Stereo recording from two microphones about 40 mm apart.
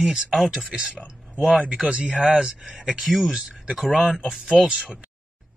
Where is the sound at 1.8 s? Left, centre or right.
Right.